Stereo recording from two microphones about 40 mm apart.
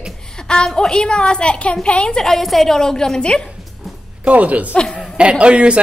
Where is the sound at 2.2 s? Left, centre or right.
Centre.